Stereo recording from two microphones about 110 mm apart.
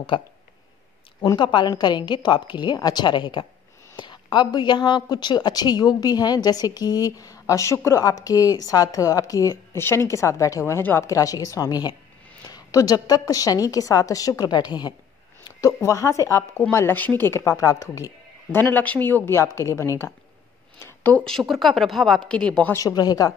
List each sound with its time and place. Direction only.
0.1 s a woman's voice: 55° left (ahead or behind)
1.2 s a woman's voice: 40° left (ahead or behind)
18.6 s speech: 15° left (ahead or behind)
20.8 s speech: 15° left (ahead or behind)
22.8 s a woman's voice: 35° left (ahead or behind)